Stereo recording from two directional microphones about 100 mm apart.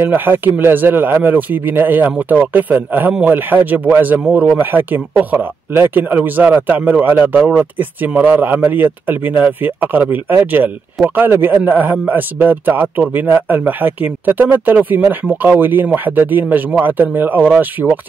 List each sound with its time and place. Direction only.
0.0 s a man's voice: 20° right (ahead or behind)